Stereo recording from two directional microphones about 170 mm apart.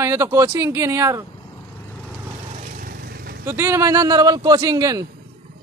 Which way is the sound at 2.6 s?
55° right (ahead or behind).